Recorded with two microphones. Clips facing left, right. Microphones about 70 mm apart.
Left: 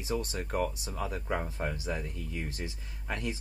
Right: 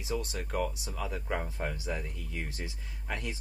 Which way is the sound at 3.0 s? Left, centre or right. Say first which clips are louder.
Left 2 dB; left.